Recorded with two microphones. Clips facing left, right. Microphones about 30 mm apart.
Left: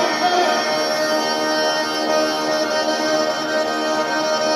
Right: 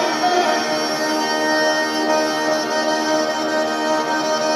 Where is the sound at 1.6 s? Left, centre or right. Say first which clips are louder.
Right 1 dB; centre.